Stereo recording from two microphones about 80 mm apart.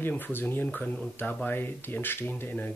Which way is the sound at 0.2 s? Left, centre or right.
Left.